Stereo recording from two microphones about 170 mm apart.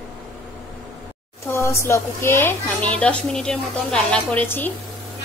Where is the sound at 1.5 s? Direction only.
15° left (ahead or behind).